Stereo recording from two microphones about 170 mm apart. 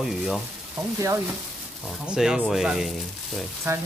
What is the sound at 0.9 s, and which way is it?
Speech, 20° right (ahead or behind).